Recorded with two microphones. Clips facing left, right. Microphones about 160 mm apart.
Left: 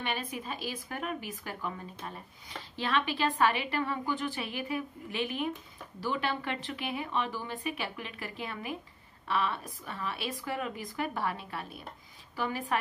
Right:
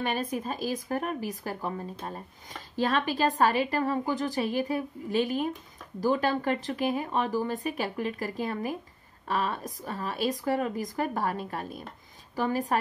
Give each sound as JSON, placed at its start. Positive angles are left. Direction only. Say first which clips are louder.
{"t": 0.0, "sound": "speech", "louder": "right 6 dB", "side_deg": -40}